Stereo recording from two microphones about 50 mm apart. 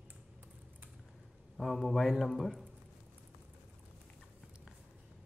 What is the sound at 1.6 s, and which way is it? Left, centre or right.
A man's voice, centre.